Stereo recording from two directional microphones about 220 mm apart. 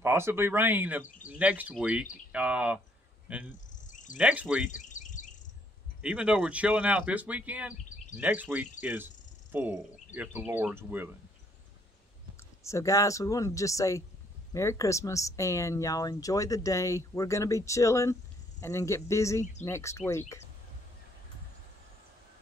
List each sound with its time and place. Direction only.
0.0 s speech: 10° right (ahead or behind)
3.7 s cricket: 35° left (ahead or behind)
4.2 s speech: 5° right (ahead or behind)
4.6 s cricket: 35° left (ahead or behind)
6.0 s speech: 5° right (ahead or behind)
8.8 s cricket: 10° right (ahead or behind)
12.6 s speech: 15° left (ahead or behind)